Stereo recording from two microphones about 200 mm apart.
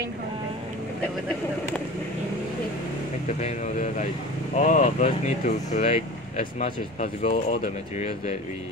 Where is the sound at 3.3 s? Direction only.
35° left (ahead or behind).